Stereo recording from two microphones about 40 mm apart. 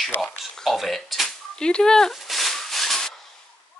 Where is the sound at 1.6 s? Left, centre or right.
Centre.